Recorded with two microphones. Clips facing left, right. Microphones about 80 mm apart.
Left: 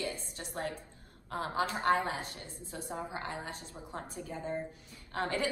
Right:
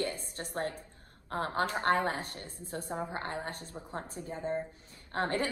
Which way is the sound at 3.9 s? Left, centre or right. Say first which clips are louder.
Right 1 dB; right.